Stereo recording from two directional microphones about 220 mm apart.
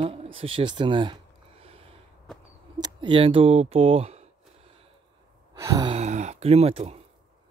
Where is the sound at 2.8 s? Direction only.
20° right (ahead or behind).